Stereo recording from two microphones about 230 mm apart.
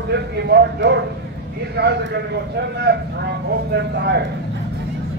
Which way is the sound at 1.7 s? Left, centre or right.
Right.